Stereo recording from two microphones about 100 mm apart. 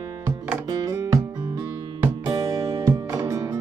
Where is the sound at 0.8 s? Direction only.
30° right (ahead or behind).